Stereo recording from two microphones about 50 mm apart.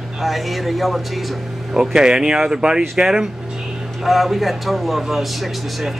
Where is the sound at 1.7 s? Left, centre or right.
Centre.